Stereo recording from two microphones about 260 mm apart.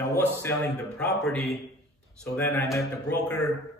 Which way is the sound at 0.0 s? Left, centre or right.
Centre.